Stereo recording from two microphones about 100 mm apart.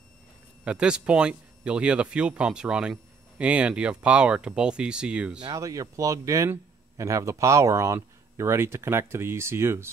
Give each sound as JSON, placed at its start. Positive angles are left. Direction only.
{"t": 0.7, "sound": "speech", "side_deg": -10}
{"t": 5.4, "sound": "speech", "side_deg": -35}